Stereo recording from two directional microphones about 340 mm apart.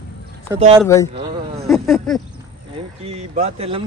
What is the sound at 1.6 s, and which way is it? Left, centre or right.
Speech, centre.